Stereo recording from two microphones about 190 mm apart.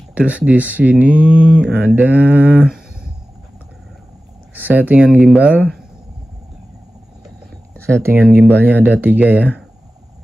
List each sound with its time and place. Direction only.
0.1 s speech: 5° right (ahead or behind)
4.6 s speech: 10° right (ahead or behind)
8.0 s speech: 10° right (ahead or behind)